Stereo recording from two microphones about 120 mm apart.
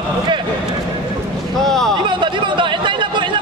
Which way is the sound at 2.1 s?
40° right (ahead or behind).